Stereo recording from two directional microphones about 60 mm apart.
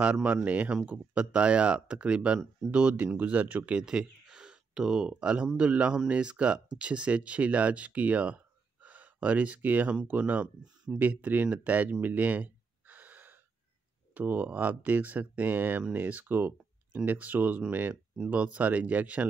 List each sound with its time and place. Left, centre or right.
0.0 s speech: right
3.8 s a sound: centre
5.1 s speech: centre; by 17.9 s right
18.3 s speech: right